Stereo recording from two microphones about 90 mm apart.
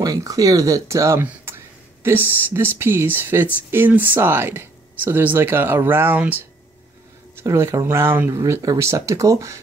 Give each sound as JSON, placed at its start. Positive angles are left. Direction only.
{"t": 0.0, "sound": "speech", "side_deg": -40}
{"t": 1.2, "sound": "a sound", "side_deg": -25}
{"t": 2.0, "sound": "speech", "side_deg": -25}
{"t": 7.3, "sound": "speech", "side_deg": -30}